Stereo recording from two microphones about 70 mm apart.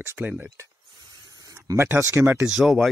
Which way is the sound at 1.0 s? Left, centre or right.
Right.